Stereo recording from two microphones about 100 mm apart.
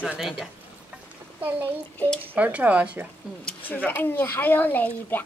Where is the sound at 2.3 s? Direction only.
15° right (ahead or behind).